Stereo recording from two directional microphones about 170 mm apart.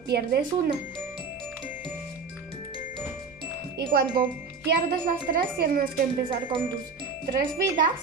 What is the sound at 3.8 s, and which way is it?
Chime, 60° right (ahead or behind).